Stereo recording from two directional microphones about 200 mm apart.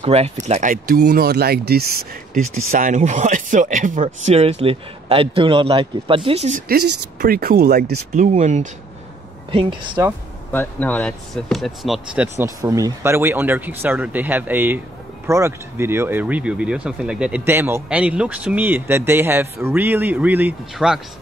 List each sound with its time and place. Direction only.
0.0 s speech: 30° right (ahead or behind); by 1.9 s 50° right (ahead or behind)
2.7 s speech: 40° right (ahead or behind)
6.7 s speech: 50° right (ahead or behind)
9.5 s speech: 25° right (ahead or behind)
10.5 s speech: 10° left (ahead or behind)
12.6 s speech: 15° right (ahead or behind)